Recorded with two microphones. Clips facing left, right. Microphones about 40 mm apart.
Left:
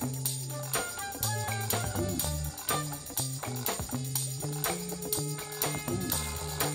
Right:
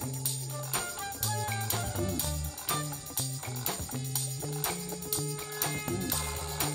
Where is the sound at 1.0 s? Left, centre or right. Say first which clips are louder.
Even; centre.